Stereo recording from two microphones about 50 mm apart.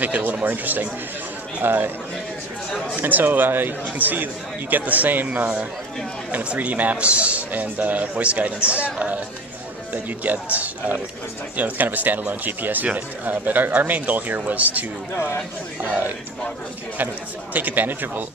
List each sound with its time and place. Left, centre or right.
0.0 s speech: right
3.0 s a man's voice: right
17.6 s speech: right